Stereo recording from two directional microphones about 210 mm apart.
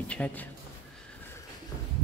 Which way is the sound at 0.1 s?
5° left (ahead or behind).